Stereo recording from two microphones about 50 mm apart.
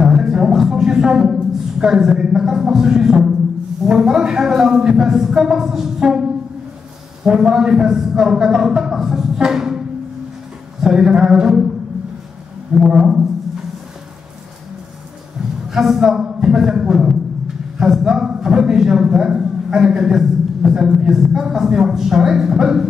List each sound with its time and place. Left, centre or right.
0.0 s a sound: centre
3.8 s speech: centre
7.2 s speech: centre
12.7 s speech: centre
15.7 s a man's voice: centre